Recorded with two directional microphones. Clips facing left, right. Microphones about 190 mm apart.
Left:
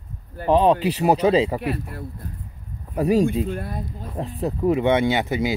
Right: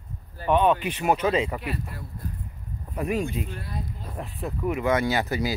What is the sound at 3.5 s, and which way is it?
Speech, 50° left (ahead or behind).